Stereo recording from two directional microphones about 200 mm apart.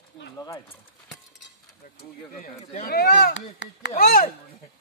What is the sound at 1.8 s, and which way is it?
Speech, 45° left (ahead or behind).